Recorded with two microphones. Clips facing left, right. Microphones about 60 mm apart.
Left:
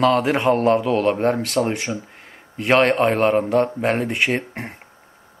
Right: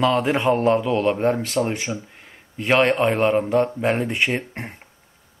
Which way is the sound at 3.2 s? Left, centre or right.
Centre.